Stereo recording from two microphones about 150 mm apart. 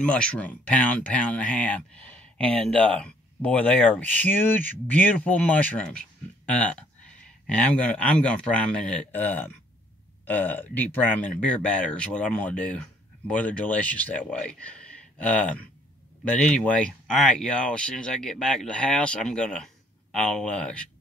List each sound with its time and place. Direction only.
0.0 s speech: 5° left (ahead or behind)